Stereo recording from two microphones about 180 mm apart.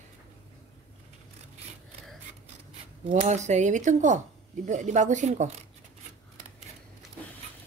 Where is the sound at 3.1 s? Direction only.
40° right (ahead or behind).